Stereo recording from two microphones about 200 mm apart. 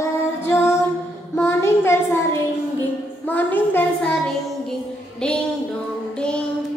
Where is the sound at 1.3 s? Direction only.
10° left (ahead or behind).